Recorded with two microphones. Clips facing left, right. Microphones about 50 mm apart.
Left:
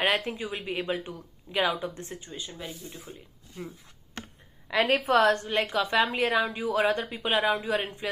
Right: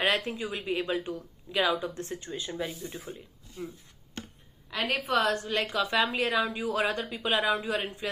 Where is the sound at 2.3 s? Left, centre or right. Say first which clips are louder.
Right 5 dB; centre.